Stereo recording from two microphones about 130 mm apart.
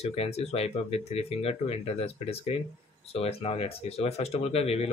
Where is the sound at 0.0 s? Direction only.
55° left (ahead or behind).